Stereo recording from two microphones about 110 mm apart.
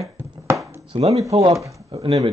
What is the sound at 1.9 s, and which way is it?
Speech, 60° right (ahead or behind).